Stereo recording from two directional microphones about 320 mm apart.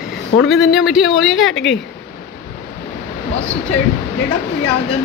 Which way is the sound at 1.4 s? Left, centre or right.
Left.